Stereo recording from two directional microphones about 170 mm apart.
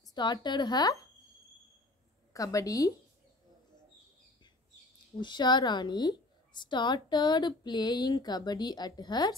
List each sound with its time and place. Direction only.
0.1 s a woman's voice: 25° left (ahead or behind)
2.3 s a woman's voice: 20° left (ahead or behind)
5.2 s a woman's voice: 25° left (ahead or behind)